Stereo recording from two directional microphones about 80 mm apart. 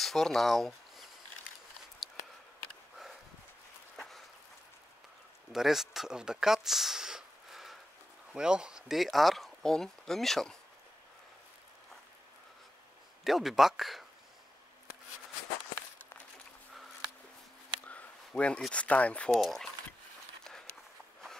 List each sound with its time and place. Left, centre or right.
0.0 s speech: centre
3.9 s a sound: centre
5.5 s speech: centre
13.2 s speech: centre
17.8 s a sound: centre
18.7 s speech: centre
19.4 s speech: centre
20.4 s run: centre